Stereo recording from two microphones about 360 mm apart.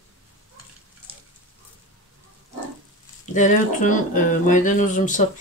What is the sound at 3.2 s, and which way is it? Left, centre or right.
Speech, left.